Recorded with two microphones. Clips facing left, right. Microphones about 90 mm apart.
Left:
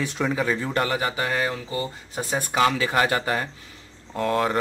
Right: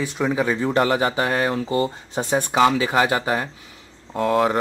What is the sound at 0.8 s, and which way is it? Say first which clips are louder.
Speech: right 5 dB; 35° right (ahead or behind).